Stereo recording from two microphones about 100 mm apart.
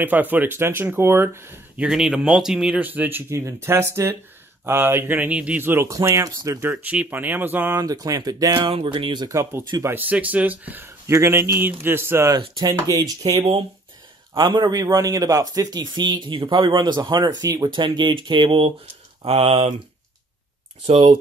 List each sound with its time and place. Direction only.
0.0 s speech: 20° right (ahead or behind)
1.8 s speech: 5° right (ahead or behind)
2.8 s speech: 20° right (ahead or behind)
6.2 s speech: 35° right (ahead or behind)
6.6 s speech: 20° right (ahead or behind)
7.8 s speech: 35° right (ahead or behind)
8.5 s speech: 55° right (ahead or behind)
9.3 s speech: 25° right (ahead or behind)
12.3 s speech: 40° right (ahead or behind)
13.3 s speech: 60° right (ahead or behind)
14.3 s a man's voice: 50° right (ahead or behind)
17.7 s a man's voice: 50° right (ahead or behind)
19.2 s speech: 75° right (ahead or behind)
20.8 s speech: 70° right (ahead or behind)